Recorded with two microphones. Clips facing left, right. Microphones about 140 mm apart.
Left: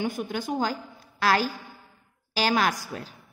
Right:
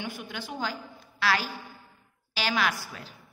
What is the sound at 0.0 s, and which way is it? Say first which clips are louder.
A woman's voice: left 8 dB; 45° left (ahead or behind).